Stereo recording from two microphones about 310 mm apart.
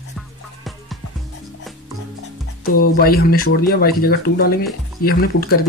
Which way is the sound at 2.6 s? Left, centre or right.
Left.